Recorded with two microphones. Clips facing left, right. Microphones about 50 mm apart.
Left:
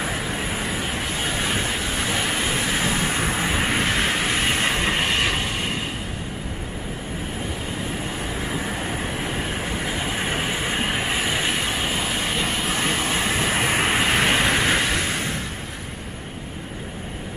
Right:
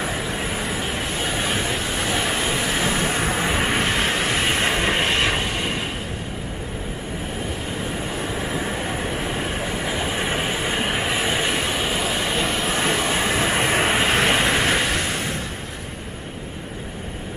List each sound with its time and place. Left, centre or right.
0.0 s vehicle: centre
4.7 s vehicle: centre
5.0 s vehicle: right
8.4 s vehicle: centre
10.9 s train: centre
12.4 s vehicle: right
12.6 s vehicle: centre